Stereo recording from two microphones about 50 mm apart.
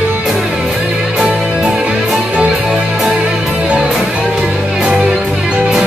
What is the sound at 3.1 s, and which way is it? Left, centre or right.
Music, right.